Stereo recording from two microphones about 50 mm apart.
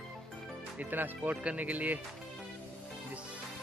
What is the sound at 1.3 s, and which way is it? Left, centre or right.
Speech, right.